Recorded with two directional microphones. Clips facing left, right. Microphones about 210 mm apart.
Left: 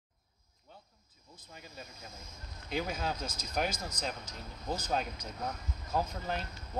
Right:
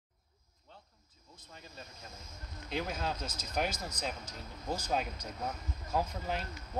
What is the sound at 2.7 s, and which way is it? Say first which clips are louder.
Speech: left 1 dB; centre (ahead or behind).